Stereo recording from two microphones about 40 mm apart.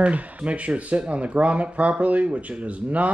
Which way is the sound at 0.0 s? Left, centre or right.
Right.